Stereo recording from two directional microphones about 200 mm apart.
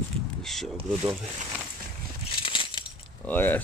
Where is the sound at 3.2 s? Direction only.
10° left (ahead or behind).